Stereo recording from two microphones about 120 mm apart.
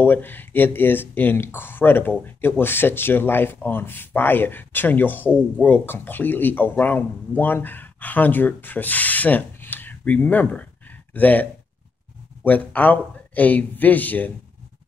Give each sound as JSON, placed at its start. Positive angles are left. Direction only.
{"t": 0.0, "sound": "speech", "side_deg": 15}
{"t": 12.4, "sound": "speech", "side_deg": 15}